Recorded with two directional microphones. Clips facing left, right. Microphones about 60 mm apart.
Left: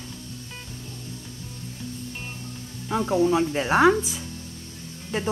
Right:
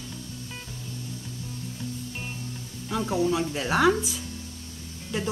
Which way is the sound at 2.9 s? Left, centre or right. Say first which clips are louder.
Left 4 dB; left.